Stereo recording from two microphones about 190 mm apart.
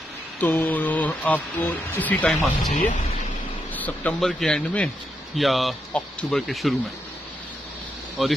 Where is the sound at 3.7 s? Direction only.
10° left (ahead or behind).